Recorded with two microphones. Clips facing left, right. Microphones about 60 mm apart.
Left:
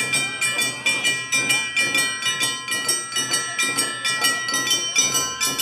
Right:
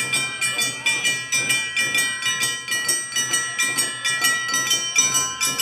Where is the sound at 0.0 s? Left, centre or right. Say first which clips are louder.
Left 1 dB; centre.